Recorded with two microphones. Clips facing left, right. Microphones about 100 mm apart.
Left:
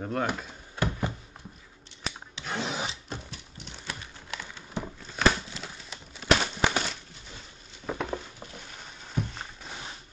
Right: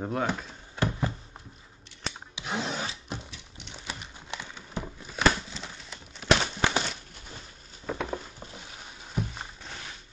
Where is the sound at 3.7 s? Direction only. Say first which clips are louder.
Even; 15° right (ahead or behind).